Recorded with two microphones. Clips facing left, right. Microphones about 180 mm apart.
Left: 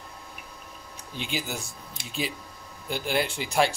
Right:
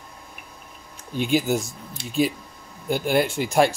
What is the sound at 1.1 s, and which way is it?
Speech, 50° right (ahead or behind).